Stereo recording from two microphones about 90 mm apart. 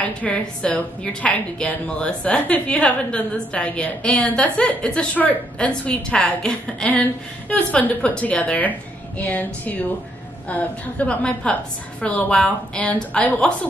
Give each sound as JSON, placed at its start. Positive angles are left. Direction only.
{"t": 0.0, "sound": "a woman's voice", "side_deg": 15}